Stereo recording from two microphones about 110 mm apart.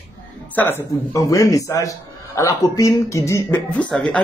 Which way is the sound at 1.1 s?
30° left (ahead or behind).